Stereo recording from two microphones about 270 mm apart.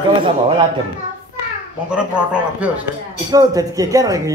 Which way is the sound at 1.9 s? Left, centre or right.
Centre.